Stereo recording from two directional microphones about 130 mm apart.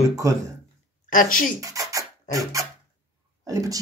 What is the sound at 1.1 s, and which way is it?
Speech, 90° left.